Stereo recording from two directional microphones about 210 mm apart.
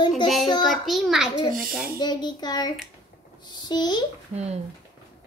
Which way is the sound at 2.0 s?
20° left (ahead or behind).